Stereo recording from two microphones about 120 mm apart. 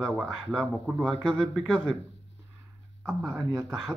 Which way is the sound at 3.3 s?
25° right (ahead or behind).